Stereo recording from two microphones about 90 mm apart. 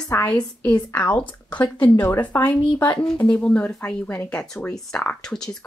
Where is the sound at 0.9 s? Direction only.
25° left (ahead or behind); by 5.6 s 5° left (ahead or behind).